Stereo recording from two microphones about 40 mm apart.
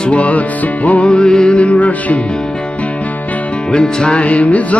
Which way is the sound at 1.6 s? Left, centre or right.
Left.